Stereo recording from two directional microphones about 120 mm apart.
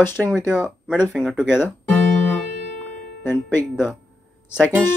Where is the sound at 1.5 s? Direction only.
15° left (ahead or behind).